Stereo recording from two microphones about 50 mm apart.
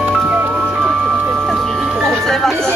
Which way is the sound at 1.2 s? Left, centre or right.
Right.